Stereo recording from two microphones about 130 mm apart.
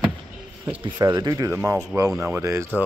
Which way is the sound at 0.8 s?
30° right (ahead or behind).